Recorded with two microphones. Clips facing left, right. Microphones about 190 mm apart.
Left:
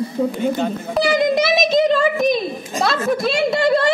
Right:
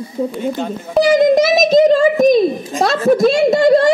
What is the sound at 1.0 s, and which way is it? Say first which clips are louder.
A woman's voice: right 6 dB; 45° right (ahead or behind).